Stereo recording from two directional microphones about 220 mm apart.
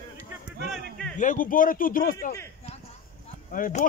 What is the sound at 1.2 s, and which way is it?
Speech, 35° left (ahead or behind).